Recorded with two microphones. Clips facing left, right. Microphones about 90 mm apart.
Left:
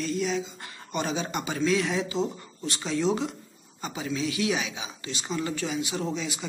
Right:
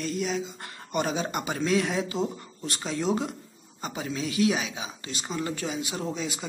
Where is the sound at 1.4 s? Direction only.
45° right (ahead or behind).